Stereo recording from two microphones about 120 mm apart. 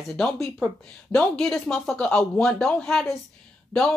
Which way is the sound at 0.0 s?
Centre (ahead or behind).